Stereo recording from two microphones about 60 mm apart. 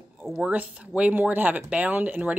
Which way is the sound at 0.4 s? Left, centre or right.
Right.